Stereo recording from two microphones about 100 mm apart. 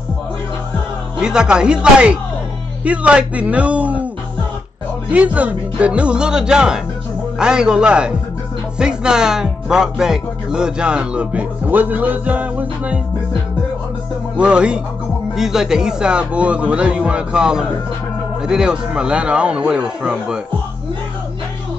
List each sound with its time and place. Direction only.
1.2 s speech: 10° right (ahead or behind)
5.1 s speech: 15° right (ahead or behind)
14.3 s speech: 10° right (ahead or behind)